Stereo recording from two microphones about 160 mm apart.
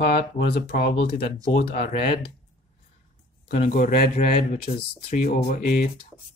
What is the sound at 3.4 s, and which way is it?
Speech, 60° left (ahead or behind).